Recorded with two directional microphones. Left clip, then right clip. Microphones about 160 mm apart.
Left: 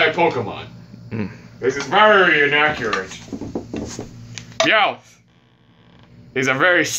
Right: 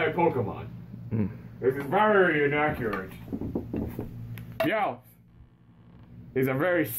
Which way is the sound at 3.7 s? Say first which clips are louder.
Left 6 dB; 5° left (ahead or behind).